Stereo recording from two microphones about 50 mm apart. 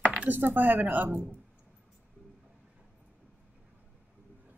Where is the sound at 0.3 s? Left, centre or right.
Right.